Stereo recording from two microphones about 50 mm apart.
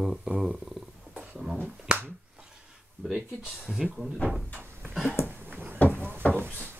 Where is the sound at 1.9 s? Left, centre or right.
Right.